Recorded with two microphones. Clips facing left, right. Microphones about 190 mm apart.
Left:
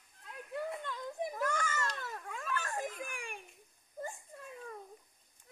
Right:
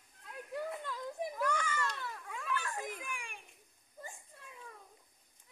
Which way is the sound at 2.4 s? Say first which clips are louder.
Left 1 dB; 45° left (ahead or behind).